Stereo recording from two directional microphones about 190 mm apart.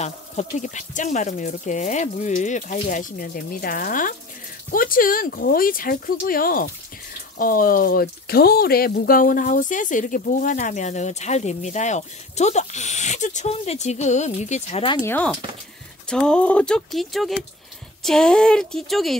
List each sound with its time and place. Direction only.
0.0 s speech: 40° left (ahead or behind)
15.0 s speech: 10° left (ahead or behind)